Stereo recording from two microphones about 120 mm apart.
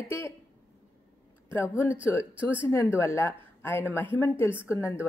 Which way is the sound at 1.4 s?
20° left (ahead or behind).